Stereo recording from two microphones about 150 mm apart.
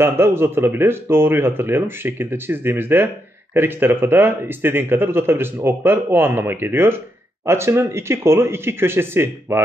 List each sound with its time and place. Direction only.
0.0 s speech: 15° right (ahead or behind)